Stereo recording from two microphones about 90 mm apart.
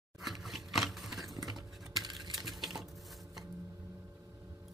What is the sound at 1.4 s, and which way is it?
Typing, centre (ahead or behind).